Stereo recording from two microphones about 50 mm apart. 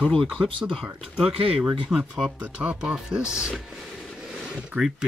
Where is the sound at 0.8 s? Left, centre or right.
Centre.